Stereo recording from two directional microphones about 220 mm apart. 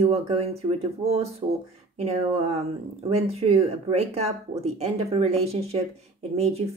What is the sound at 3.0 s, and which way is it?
Speech, 30° right (ahead or behind).